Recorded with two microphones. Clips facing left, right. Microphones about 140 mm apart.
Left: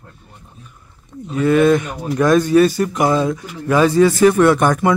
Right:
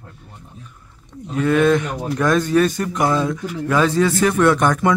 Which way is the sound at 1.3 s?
5° left (ahead or behind).